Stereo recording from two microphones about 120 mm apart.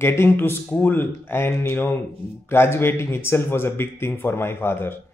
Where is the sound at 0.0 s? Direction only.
20° left (ahead or behind).